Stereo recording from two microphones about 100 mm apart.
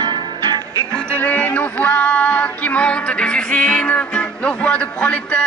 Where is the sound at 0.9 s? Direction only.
10° left (ahead or behind).